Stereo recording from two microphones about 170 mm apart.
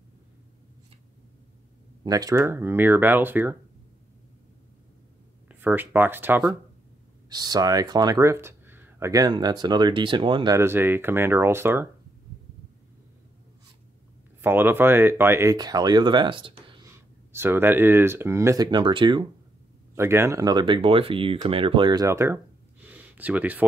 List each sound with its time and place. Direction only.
2.0 s speech: 20° right (ahead or behind)
5.5 s speech: 10° right (ahead or behind)
7.2 s speech: 25° right (ahead or behind)
14.4 s speech: 10° right (ahead or behind); by 16.8 s 30° right (ahead or behind)
16.8 s speech: 15° right (ahead or behind)
20.0 s speech: 15° right (ahead or behind)
22.8 s a sound: 10° right (ahead or behind)